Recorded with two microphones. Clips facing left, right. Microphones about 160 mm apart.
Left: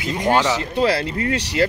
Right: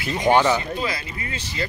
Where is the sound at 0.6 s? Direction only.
70° left (ahead or behind).